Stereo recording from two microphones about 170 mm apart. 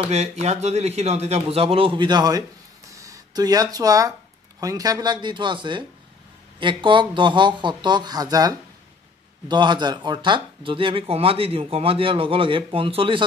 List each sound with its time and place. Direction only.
0.1 s speech: 40° right (ahead or behind); by 2.4 s 25° right (ahead or behind)
2.9 s a sound: 20° right (ahead or behind)
4.6 s speech: 20° right (ahead or behind)